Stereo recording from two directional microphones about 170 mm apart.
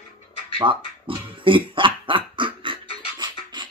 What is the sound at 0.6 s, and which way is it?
Speech, 30° right (ahead or behind).